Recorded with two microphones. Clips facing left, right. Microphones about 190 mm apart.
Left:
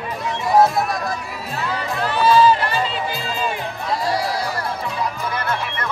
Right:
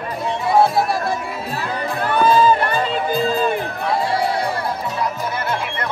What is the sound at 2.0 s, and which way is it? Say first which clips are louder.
Music: even; 55° right (ahead or behind).